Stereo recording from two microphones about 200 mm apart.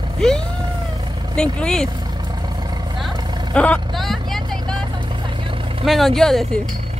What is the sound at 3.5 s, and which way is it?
Vehicle, 5° left (ahead or behind).